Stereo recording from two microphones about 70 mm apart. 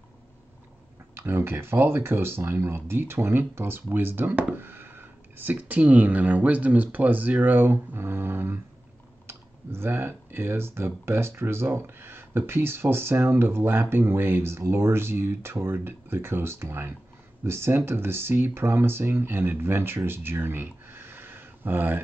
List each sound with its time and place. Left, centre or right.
1.1 s speech: right